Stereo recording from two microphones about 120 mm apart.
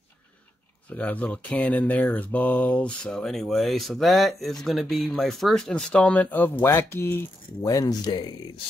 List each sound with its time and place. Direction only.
0.8 s speech: 10° left (ahead or behind)
7.6 s speech: 30° left (ahead or behind)